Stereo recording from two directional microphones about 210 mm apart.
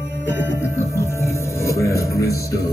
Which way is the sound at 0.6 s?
10° left (ahead or behind).